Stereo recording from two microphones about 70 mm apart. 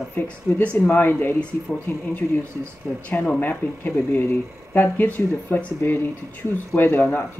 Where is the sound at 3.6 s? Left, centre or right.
Left.